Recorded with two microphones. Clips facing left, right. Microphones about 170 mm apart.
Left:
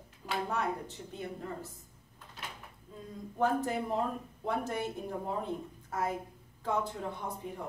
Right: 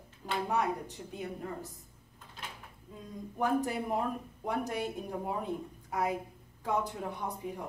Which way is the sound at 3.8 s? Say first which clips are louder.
Even; 15° right (ahead or behind).